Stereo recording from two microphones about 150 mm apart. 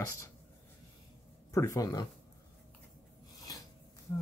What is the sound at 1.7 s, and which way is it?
Speech, 25° left (ahead or behind).